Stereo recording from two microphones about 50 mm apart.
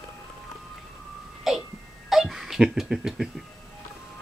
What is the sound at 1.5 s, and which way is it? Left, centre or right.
Music, centre.